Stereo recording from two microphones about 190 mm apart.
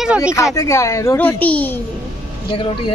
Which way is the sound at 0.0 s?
5° right (ahead or behind).